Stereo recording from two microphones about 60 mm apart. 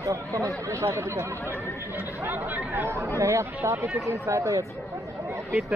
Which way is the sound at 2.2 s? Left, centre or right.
Right.